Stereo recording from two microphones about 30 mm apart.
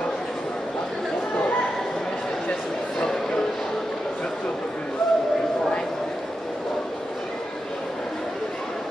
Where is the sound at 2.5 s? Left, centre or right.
Left.